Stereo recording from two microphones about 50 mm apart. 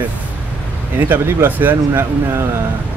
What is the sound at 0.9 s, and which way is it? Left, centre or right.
Speech, right.